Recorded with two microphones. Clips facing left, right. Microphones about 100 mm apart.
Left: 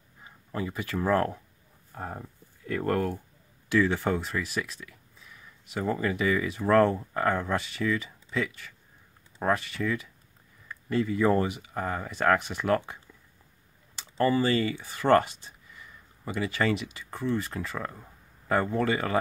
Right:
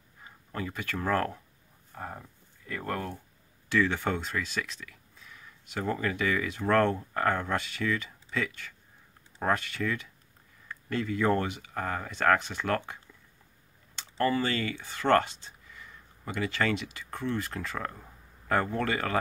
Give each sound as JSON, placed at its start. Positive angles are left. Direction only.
{"t": 0.5, "sound": "speech", "side_deg": 15}
{"t": 2.0, "sound": "speech", "side_deg": 35}
{"t": 2.6, "sound": "speech", "side_deg": 45}
{"t": 3.7, "sound": "speech", "side_deg": 5}
{"t": 14.2, "sound": "speech", "side_deg": 15}